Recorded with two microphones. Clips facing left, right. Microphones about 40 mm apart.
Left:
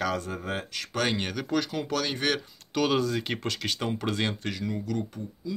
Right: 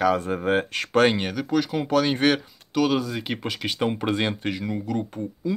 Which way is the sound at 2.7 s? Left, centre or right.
Centre.